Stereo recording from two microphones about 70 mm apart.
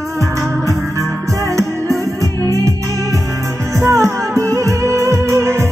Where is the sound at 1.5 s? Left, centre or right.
Right.